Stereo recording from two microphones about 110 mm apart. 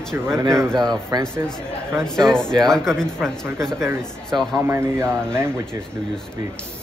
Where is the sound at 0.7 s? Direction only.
35° right (ahead or behind).